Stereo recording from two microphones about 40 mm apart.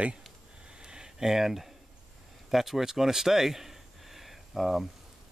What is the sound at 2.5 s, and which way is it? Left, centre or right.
Speech, centre.